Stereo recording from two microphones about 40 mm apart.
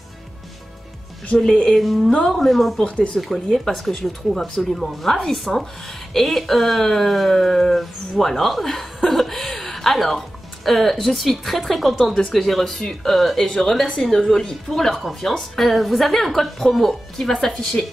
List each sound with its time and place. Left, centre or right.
1.4 s speech: centre
1.8 s speech: centre
2.8 s speech: left
3.2 s speech: centre